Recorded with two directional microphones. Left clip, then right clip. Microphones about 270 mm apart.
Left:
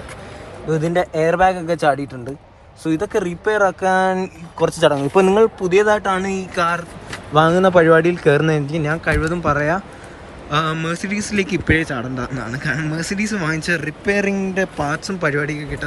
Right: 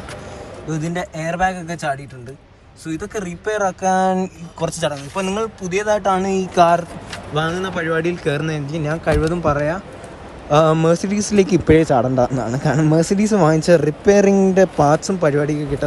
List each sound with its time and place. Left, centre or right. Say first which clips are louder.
0.7 s speech: left 7 dB; centre
5.1 s speech: left 9 dB; left
5.6 s speech: left 4 dB; centre
7.1 s speech: left 8 dB; centre